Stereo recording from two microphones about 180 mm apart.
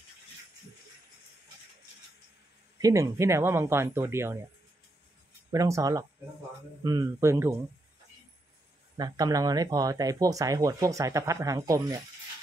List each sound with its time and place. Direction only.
2.8 s speech: 15° right (ahead or behind)
5.5 s speech: 20° right (ahead or behind)
8.9 s speech: 20° right (ahead or behind)